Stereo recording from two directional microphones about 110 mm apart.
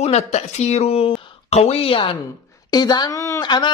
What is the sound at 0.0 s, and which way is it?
Speech, 75° left (ahead or behind).